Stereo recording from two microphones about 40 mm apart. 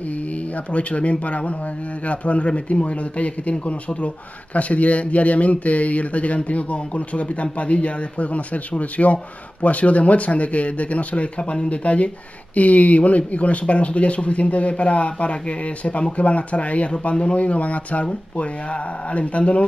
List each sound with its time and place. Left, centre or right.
0.7 s a man's voice: left
19.1 s a man's voice: left